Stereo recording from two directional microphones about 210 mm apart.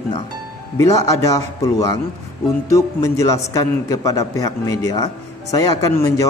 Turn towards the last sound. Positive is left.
turn(degrees=15)  # may be behind; listen again after turning